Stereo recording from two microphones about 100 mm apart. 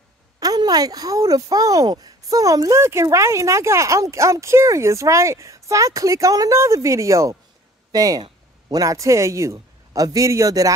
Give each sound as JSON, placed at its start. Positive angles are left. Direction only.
{"t": 0.4, "sound": "speech", "side_deg": -40}